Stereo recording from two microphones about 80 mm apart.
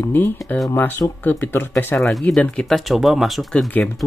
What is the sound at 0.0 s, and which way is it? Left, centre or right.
Speech, left.